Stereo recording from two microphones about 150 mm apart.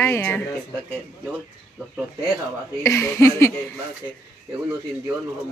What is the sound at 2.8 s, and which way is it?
Speech, 20° left (ahead or behind).